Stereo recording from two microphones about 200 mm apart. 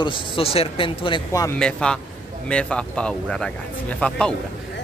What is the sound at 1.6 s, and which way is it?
Speech, 5° left (ahead or behind).